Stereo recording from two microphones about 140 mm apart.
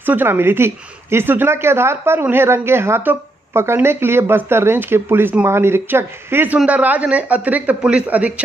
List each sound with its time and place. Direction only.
0.0 s a woman's voice: 15° right (ahead or behind)